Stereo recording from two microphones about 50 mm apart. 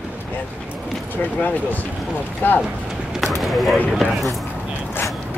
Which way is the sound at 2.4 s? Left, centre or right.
Left.